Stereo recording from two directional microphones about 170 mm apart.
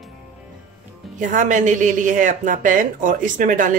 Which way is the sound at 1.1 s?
45° right (ahead or behind).